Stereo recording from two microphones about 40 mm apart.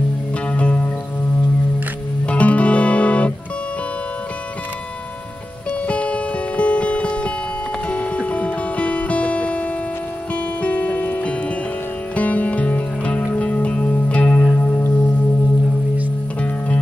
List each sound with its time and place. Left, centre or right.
0.5 s music: left
2.2 s music: left
5.9 s music: left
10.6 s music: left
12.2 s music: left
16.3 s music: left